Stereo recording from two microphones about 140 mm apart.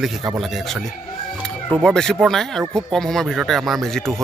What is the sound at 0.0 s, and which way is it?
Speech, centre (ahead or behind).